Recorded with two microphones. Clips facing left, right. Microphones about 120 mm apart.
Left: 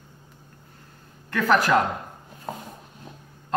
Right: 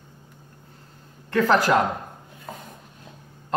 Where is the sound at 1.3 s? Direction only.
25° right (ahead or behind).